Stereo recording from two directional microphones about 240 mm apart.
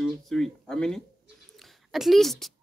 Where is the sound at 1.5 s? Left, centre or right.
Centre.